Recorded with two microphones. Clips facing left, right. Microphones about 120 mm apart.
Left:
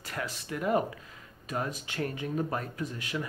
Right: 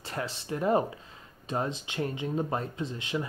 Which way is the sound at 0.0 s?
30° right (ahead or behind).